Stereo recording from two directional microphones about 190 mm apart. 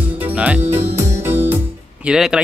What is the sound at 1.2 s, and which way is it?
Music, 10° right (ahead or behind).